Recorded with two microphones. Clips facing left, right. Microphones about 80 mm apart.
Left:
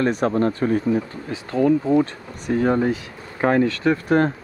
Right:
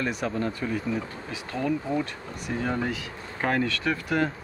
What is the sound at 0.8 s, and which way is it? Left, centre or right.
Speech, left.